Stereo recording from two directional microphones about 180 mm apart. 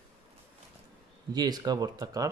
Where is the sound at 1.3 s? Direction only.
20° right (ahead or behind).